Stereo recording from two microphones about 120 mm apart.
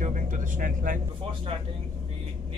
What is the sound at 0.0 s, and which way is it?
Vehicle, 90° right.